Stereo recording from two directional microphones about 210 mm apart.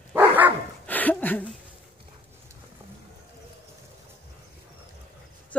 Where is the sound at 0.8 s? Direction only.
5° left (ahead or behind).